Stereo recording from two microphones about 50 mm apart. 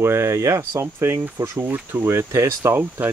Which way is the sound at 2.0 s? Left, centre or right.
Right.